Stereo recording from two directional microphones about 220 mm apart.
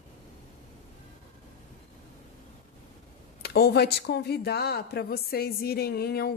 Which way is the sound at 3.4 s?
45° left (ahead or behind).